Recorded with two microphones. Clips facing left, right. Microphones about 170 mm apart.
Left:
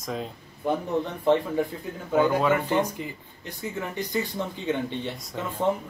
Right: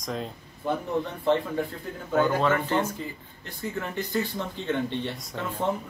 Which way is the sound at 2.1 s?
10° left (ahead or behind).